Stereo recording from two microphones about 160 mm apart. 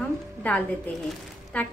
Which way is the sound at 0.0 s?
10° left (ahead or behind).